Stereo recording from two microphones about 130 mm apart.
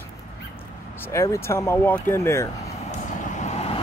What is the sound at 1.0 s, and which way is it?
Speech, 20° left (ahead or behind).